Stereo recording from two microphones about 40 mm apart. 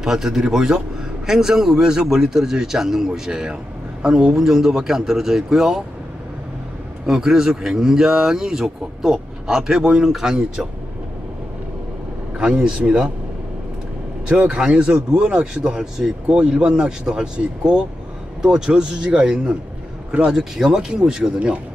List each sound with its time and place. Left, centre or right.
0.0 s a man's voice: centre
7.1 s a man's voice: centre
10.0 s a man's voice: centre
12.6 s speech: right
14.3 s a man's voice: right